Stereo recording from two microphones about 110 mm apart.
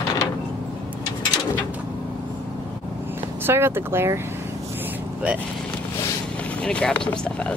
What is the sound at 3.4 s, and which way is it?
Speech, 20° right (ahead or behind).